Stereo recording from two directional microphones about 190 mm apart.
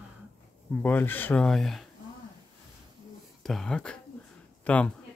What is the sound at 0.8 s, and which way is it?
Speech, 10° left (ahead or behind).